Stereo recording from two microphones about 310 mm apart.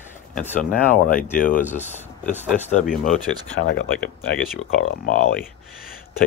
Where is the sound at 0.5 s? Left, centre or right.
Left.